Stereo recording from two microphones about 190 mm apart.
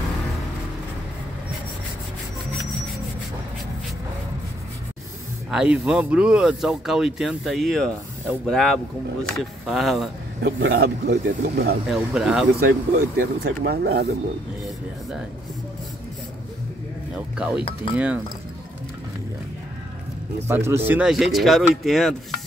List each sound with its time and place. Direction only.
5.5 s speech: 5° right (ahead or behind)
10.4 s speech: 55° right (ahead or behind)
11.9 s speech: 5° right (ahead or behind)
12.5 s speech: 55° right (ahead or behind)
17.1 s speech: 5° right (ahead or behind)
17.6 s speech: 30° left (ahead or behind)
17.9 s speech: 5° right (ahead or behind)
20.4 s speech: 15° right (ahead or behind)